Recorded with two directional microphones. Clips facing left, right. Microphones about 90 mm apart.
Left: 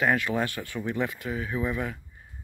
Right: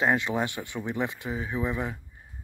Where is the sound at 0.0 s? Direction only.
20° right (ahead or behind).